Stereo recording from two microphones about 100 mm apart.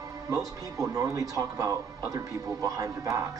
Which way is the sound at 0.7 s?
30° right (ahead or behind).